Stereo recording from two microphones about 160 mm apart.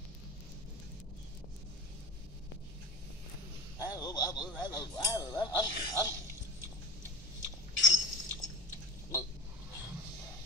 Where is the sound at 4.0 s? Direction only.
25° left (ahead or behind).